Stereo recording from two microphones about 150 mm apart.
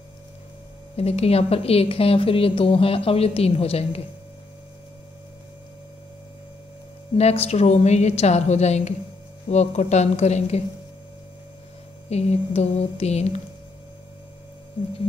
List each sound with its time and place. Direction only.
0.9 s speech: 45° left (ahead or behind)
7.2 s a woman's voice: 45° left (ahead or behind)
12.1 s a woman's voice: 45° left (ahead or behind)